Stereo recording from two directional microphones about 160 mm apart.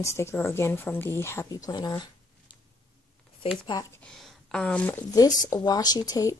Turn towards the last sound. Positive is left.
turn(degrees=20)  # may be behind; listen again after turning